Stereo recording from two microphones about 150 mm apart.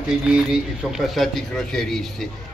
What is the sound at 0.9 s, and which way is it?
A man's voice, centre (ahead or behind).